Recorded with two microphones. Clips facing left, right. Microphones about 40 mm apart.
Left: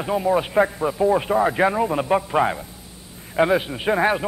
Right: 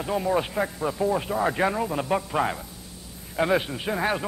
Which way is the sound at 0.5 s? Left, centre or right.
Left.